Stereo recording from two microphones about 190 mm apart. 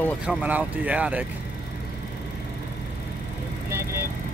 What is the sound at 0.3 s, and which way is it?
Speech, 10° right (ahead or behind).